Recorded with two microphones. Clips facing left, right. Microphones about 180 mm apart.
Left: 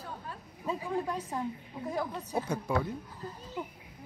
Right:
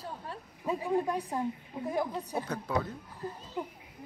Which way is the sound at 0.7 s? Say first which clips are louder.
Right 3 dB; 15° right (ahead or behind).